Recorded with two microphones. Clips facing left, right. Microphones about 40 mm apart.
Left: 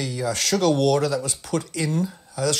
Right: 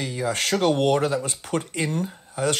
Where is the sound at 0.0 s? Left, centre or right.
Right.